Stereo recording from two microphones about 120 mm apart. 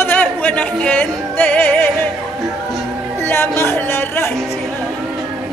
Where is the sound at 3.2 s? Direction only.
20° left (ahead or behind).